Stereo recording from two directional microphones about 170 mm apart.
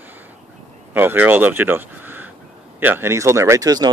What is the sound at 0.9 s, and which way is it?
Speech, 10° right (ahead or behind).